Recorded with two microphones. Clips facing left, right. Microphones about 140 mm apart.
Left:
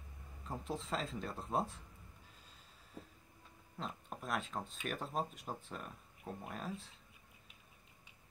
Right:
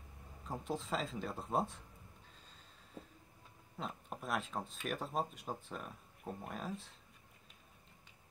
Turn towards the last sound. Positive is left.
turn(degrees=0)  # may be behind; listen again after turning